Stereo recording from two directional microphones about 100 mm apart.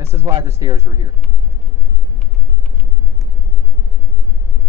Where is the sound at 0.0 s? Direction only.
25° right (ahead or behind).